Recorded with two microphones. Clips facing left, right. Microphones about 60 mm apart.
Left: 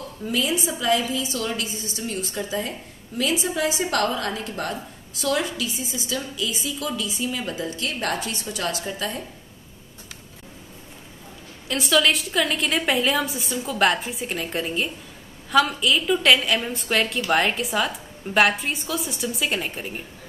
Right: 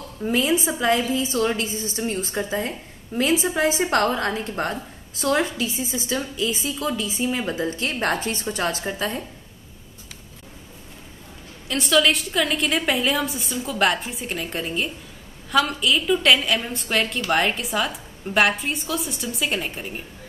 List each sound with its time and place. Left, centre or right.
0.2 s a woman's voice: right
11.6 s a woman's voice: centre